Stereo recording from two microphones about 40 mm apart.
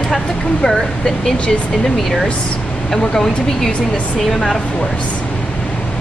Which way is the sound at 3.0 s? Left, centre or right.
Centre.